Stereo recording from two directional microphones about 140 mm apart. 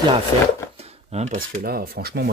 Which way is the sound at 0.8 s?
50° right (ahead or behind).